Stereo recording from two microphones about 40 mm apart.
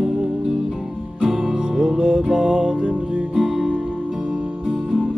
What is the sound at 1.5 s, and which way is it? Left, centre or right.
Music, right.